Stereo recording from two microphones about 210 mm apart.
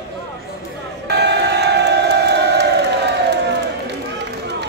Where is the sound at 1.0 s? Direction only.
55° right (ahead or behind).